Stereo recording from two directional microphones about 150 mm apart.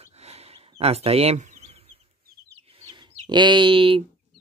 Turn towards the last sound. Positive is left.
turn(degrees=-35)  # may be behind; listen again after turning